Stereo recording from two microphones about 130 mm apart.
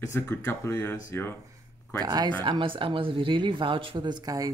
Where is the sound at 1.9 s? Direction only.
30° right (ahead or behind).